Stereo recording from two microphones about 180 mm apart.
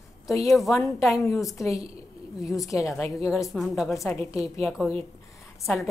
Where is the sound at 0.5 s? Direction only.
Centre (ahead or behind).